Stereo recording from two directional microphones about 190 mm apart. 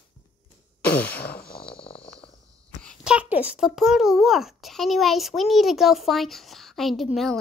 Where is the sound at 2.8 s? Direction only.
5° left (ahead or behind).